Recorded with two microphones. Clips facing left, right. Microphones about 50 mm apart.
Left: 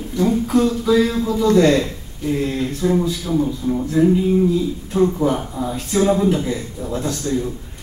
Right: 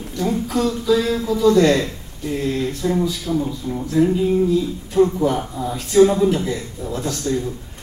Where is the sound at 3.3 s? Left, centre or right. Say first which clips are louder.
Left 3 dB; centre.